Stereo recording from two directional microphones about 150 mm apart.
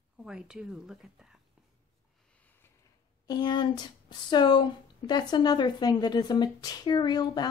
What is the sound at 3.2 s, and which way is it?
A woman's voice, 30° left (ahead or behind).